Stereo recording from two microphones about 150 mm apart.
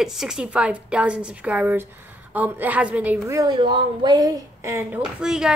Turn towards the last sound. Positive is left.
turn(degrees=-5)  # may be behind; listen again after turning